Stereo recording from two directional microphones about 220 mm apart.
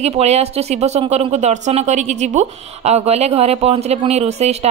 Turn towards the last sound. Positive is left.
turn(degrees=-30)  # may be behind; listen again after turning